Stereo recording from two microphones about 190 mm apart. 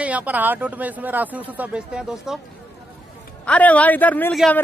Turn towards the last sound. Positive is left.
turn(degrees=5)  # may be behind; listen again after turning